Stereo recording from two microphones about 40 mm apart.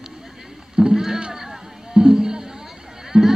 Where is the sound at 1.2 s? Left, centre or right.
Centre.